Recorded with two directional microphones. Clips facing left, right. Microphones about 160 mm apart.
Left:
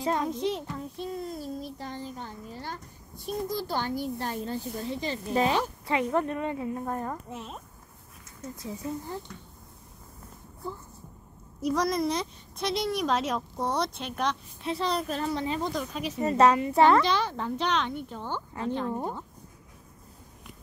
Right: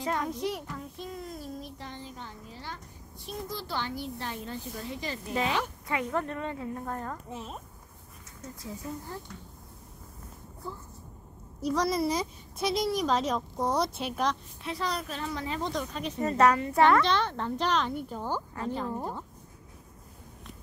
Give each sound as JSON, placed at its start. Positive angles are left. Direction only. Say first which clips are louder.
{"t": 0.0, "sound": "speech", "louder": "left 3 dB", "side_deg": 25}
{"t": 7.2, "sound": "a woman's voice", "louder": "even", "side_deg": 0}
{"t": 11.7, "sound": "a woman's voice", "louder": "even", "side_deg": 0}
{"t": 14.6, "sound": "a woman's voice", "louder": "left 6 dB", "side_deg": 25}
{"t": 15.0, "sound": "speech", "louder": "left 5 dB", "side_deg": 40}
{"t": 15.3, "sound": "a woman's voice", "louder": "left 4 dB", "side_deg": 20}
{"t": 15.6, "sound": "speech", "louder": "left 1 dB", "side_deg": 10}
{"t": 16.2, "sound": "a woman's voice", "louder": "left 2 dB", "side_deg": 25}
{"t": 17.0, "sound": "a woman's voice", "louder": "even", "side_deg": 10}